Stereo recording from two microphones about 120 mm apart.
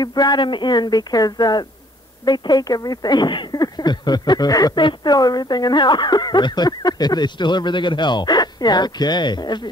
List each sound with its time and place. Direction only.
0.0 s speech: 35° left (ahead or behind)